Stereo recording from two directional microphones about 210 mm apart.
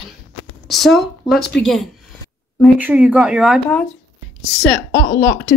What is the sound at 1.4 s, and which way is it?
Speech, 50° left (ahead or behind).